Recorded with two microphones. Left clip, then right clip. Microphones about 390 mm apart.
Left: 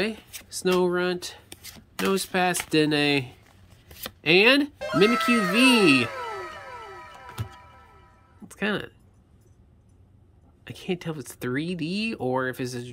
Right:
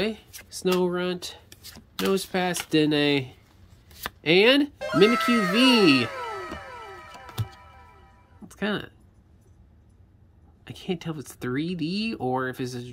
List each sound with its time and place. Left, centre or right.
0.0 s speech: centre
7.4 s music: centre
8.5 s speech: centre
10.6 s speech: centre